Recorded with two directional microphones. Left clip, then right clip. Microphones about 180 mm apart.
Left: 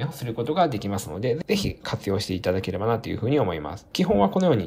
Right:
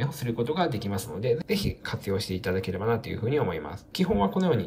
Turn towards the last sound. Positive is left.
turn(degrees=20)  # may be behind; listen again after turning